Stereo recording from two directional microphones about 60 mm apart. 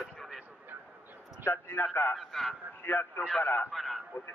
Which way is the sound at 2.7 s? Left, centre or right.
Left.